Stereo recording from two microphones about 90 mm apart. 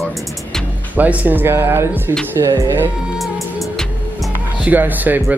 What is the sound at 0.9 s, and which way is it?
Speech, 20° right (ahead or behind).